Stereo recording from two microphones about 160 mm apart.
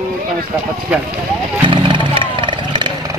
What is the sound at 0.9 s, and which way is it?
Speech, 10° right (ahead or behind).